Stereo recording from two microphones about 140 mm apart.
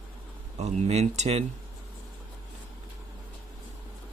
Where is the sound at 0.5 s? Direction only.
50° right (ahead or behind).